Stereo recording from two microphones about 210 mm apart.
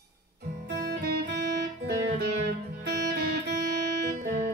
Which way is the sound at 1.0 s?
50° right (ahead or behind).